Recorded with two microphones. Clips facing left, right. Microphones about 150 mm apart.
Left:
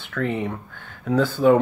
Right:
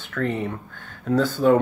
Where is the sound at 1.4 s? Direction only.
Centre (ahead or behind).